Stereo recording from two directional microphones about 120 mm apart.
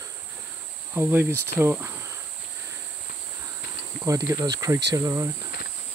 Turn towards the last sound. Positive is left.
turn(degrees=-30)  # may be behind; listen again after turning